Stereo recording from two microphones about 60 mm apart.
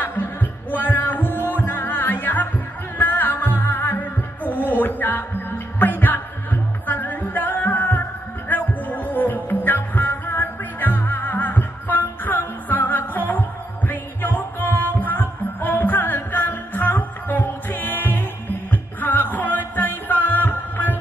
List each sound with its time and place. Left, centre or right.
0.0 s music: left